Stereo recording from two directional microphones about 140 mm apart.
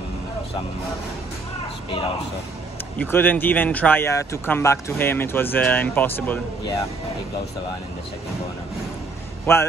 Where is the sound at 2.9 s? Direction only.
15° left (ahead or behind).